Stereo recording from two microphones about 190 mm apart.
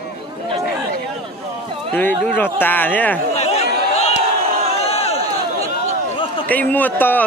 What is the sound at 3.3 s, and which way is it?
Chatter, 35° left (ahead or behind).